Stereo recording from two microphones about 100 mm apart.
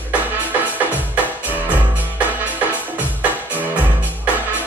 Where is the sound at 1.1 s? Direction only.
15° right (ahead or behind).